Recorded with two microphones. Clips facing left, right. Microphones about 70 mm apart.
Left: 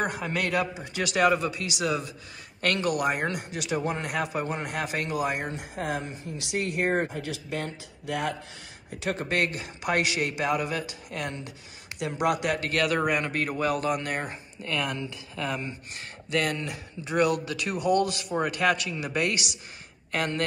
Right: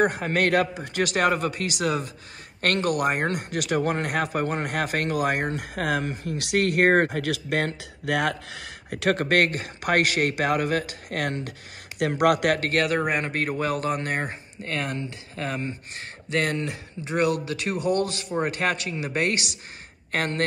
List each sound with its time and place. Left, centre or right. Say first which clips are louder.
0.0 s speech: right 6 dB; right
12.8 s speech: right 1 dB; right